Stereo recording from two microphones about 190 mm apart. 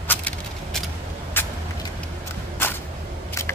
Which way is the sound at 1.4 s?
10° left (ahead or behind).